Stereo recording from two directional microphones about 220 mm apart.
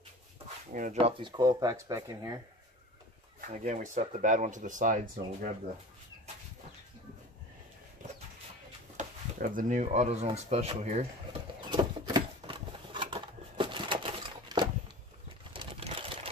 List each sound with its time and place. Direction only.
0.7 s speech: 40° right (ahead or behind)
1.2 s speech: 20° right (ahead or behind)
3.3 s speech: 35° right (ahead or behind)
8.9 s speech: 35° right (ahead or behind)
11.6 s a sound: 20° right (ahead or behind)